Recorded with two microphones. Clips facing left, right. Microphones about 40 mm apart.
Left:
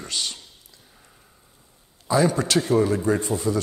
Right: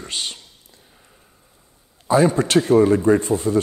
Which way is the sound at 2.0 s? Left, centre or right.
Right.